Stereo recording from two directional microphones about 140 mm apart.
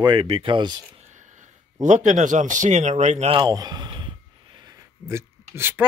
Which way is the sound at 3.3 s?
30° right (ahead or behind).